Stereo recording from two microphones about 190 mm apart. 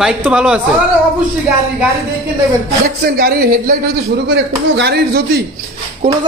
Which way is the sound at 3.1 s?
50° right (ahead or behind).